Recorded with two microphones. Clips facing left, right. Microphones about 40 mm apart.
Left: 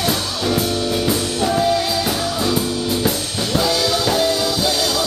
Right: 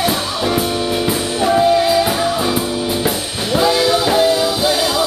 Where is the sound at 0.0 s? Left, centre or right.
Right.